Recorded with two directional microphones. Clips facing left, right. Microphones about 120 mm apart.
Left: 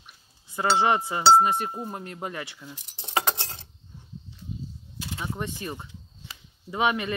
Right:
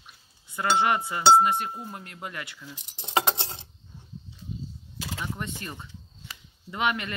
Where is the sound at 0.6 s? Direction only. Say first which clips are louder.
Left 2 dB; 25° left (ahead or behind).